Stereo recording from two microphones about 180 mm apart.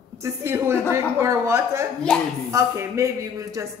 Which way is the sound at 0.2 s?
15° right (ahead or behind).